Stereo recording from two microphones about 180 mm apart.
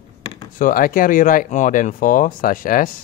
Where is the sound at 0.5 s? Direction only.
50° left (ahead or behind).